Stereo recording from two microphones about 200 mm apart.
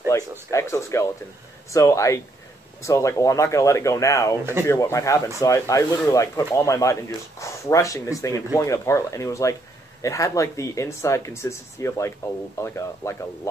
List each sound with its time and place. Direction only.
0.1 s speech: 15° left (ahead or behind)